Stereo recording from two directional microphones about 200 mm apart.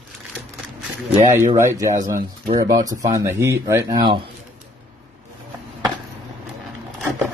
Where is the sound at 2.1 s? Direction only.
45° right (ahead or behind).